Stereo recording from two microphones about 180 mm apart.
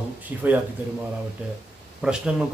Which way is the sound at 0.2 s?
10° right (ahead or behind).